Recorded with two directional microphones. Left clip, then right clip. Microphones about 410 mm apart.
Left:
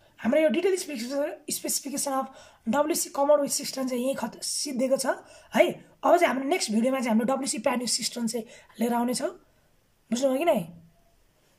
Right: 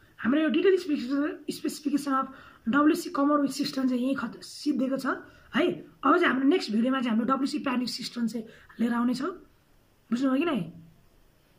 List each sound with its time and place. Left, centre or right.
0.2 s a woman's voice: centre